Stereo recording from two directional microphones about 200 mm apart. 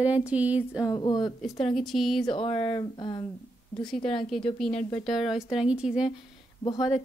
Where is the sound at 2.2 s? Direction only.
25° left (ahead or behind).